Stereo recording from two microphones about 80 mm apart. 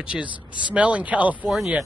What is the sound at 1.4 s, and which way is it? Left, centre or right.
Speech, centre.